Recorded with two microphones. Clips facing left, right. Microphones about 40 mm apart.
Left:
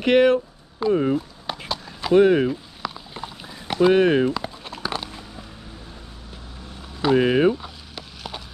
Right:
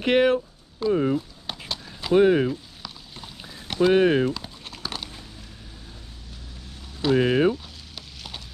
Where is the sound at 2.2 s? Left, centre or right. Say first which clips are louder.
Left 2 dB; left.